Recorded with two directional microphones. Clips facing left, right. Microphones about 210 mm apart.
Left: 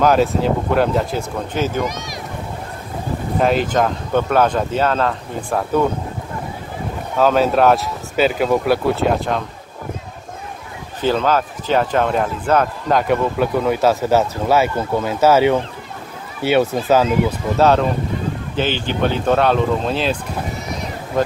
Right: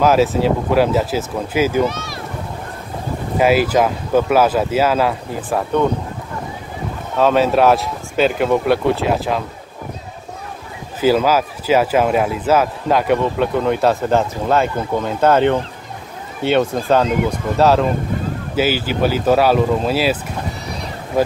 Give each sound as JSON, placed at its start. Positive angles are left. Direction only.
{"t": 0.0, "sound": "speech", "side_deg": 0}
{"t": 1.9, "sound": "speech", "side_deg": 15}
{"t": 3.3, "sound": "speech", "side_deg": -5}
{"t": 7.2, "sound": "speech", "side_deg": 0}
{"t": 11.0, "sound": "speech", "side_deg": -5}
{"t": 20.6, "sound": "a sound", "side_deg": -35}